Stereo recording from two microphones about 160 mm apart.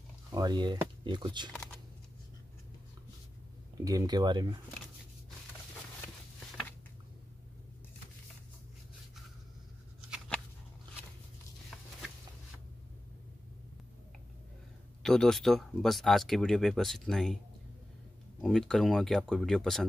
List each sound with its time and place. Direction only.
0.3 s speech: 25° right (ahead or behind)
3.8 s speech: 20° right (ahead or behind)
15.0 s speech: 5° left (ahead or behind)
18.4 s speech: centre (ahead or behind)